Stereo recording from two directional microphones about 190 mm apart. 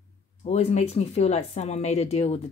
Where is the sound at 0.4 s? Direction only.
35° left (ahead or behind).